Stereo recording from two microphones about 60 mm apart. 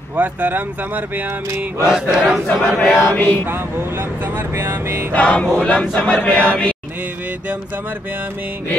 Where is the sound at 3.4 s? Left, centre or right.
Right.